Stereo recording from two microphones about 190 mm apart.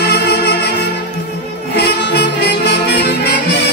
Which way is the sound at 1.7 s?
60° left (ahead or behind).